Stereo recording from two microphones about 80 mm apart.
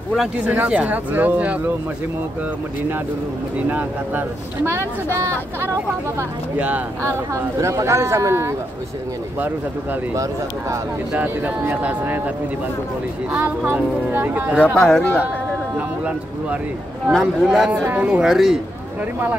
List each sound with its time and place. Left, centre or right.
0.5 s speech: centre
3.5 s speech: centre
4.6 s speech: right
7.0 s speech: right
11.1 s speech: right
13.3 s speech: right
14.8 s speech: centre
17.1 s speech: centre